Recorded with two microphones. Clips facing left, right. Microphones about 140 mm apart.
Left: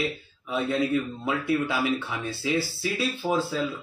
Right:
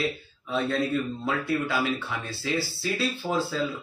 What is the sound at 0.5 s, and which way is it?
Speech, 10° left (ahead or behind).